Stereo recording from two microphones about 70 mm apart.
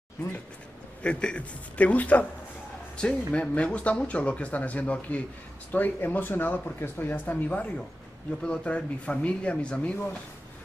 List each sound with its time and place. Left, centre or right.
1.0 s speech: centre